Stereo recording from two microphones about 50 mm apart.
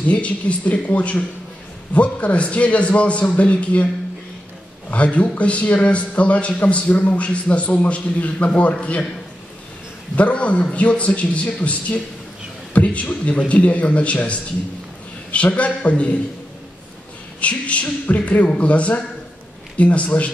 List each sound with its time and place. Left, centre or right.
0.0 s a man's voice: left
4.9 s a man's voice: left
10.1 s a man's voice: left
17.4 s a man's voice: left